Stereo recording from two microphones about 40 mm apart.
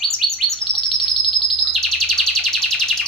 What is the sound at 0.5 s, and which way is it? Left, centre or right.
Bird, centre.